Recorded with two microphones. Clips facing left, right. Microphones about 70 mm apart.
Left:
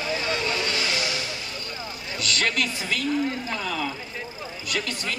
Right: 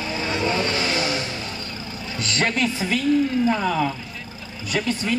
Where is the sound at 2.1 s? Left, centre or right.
Right.